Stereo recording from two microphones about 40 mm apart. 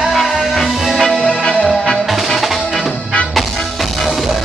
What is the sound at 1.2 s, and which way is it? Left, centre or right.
Music, centre.